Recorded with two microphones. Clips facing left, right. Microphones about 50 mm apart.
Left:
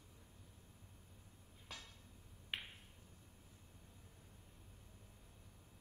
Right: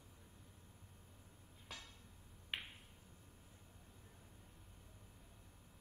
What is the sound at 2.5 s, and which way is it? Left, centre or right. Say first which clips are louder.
Finger snapping: even; centre.